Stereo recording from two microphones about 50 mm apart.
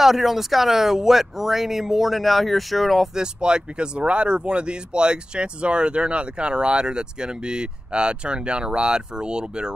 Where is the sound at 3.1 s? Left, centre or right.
Centre.